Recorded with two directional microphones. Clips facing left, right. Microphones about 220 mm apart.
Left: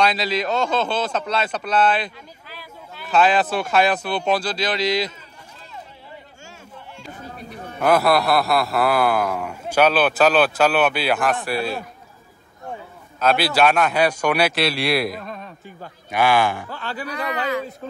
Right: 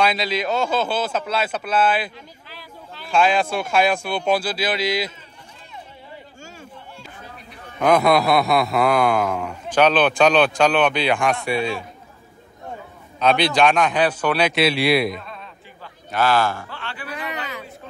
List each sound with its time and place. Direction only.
0.2 s a man's voice: 5° right (ahead or behind)
2.6 s a sound: 5° left (ahead or behind)
3.3 s a man's voice: 5° left (ahead or behind)
7.1 s a sound: 45° left (ahead or behind)
7.8 s a man's voice: 5° left (ahead or behind)
13.2 s speech: 5° left (ahead or behind)
14.5 s a man's voice: centre (ahead or behind)
15.1 s a sound: 45° left (ahead or behind)
16.1 s speech: 15° left (ahead or behind)
16.7 s speech: 40° left (ahead or behind)